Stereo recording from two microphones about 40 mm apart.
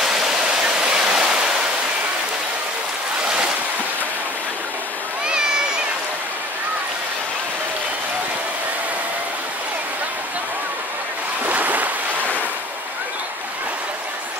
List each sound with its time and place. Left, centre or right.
0.0 s waterfall: centre
11.4 s waves: right